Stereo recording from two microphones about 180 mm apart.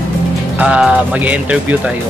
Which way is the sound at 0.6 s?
5° right (ahead or behind).